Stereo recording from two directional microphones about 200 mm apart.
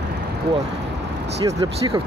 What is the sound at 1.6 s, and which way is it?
Speech, 25° right (ahead or behind).